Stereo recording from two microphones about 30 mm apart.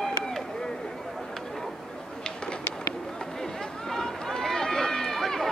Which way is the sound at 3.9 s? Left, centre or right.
Centre.